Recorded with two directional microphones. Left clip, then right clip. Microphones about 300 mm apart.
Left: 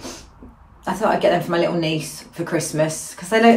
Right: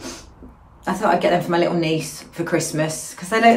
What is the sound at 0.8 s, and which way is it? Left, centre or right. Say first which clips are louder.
A woman's voice: even; centre.